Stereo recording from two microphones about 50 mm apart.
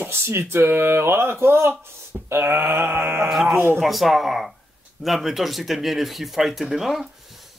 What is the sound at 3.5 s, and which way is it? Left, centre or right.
Speech, right.